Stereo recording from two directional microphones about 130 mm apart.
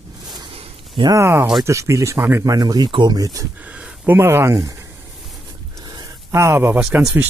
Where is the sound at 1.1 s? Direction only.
20° right (ahead or behind).